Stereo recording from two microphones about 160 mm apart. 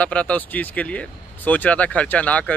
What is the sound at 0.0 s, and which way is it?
Speech, 10° left (ahead or behind).